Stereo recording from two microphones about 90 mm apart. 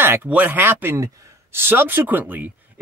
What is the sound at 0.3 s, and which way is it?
Speech, 20° right (ahead or behind).